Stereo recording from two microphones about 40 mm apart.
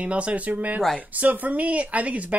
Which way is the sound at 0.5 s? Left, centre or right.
Right.